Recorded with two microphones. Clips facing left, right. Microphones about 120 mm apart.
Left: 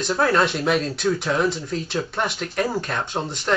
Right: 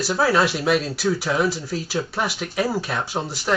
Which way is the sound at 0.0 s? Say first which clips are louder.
Even; 5° right (ahead or behind).